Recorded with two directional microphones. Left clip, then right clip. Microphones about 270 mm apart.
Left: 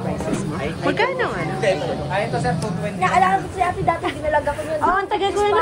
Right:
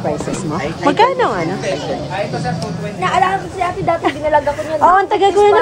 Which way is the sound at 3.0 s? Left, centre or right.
Right.